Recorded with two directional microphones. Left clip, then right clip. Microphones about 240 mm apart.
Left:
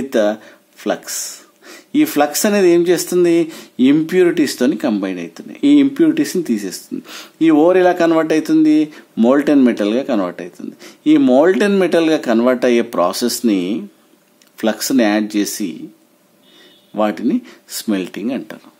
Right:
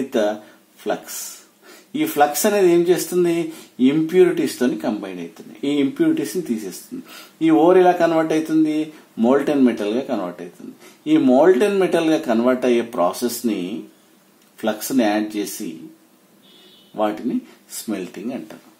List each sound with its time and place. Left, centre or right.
0.1 s speech: left
16.9 s speech: left